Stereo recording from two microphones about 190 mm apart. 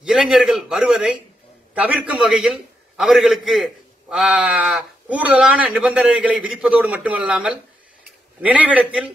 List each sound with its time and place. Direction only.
0.0 s a man's voice: centre (ahead or behind)